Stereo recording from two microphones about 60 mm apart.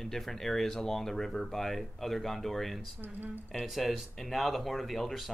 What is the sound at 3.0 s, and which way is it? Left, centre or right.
Speech, right.